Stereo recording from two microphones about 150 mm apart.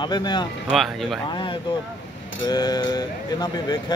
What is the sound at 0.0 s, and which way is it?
Speech, 30° left (ahead or behind).